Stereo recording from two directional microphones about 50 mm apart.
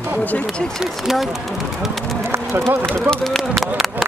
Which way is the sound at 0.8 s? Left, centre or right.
Centre.